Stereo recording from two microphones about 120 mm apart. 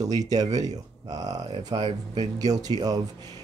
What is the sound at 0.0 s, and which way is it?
Speech, 30° right (ahead or behind).